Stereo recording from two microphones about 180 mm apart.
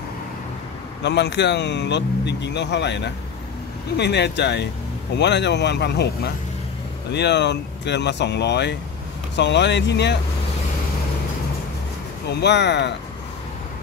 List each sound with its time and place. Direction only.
1.0 s speech: 70° left (ahead or behind)
12.3 s speech: 70° left (ahead or behind)